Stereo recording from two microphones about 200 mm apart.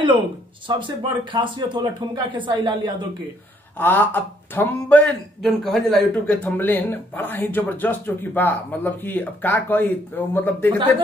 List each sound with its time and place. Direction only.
0.7 s speech: 25° right (ahead or behind)
3.7 s speech: 10° left (ahead or behind)